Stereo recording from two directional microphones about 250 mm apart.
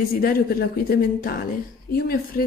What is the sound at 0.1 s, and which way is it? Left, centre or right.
Speech, left.